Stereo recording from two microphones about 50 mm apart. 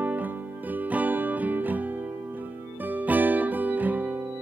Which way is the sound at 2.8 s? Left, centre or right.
Right.